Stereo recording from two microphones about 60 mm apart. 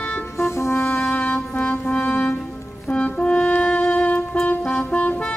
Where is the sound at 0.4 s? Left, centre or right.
Left.